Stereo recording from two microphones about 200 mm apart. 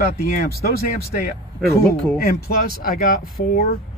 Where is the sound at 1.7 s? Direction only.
10° left (ahead or behind).